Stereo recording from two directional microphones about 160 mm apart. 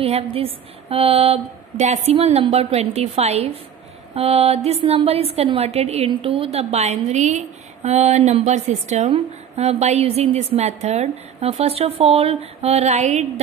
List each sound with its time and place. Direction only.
0.0 s a woman's voice: 40° right (ahead or behind)